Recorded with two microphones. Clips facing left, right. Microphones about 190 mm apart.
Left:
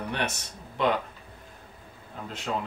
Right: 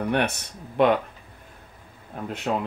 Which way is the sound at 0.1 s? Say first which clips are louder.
Right 7 dB; 60° right (ahead or behind).